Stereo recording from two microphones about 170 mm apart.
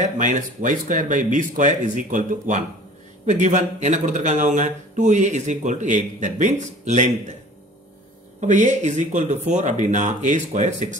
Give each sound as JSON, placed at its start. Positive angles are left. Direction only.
{"t": 0.2, "sound": "speech", "side_deg": -50}
{"t": 8.4, "sound": "speech", "side_deg": -45}